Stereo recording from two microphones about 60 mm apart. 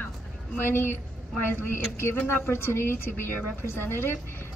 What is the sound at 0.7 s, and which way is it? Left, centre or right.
Speech, left.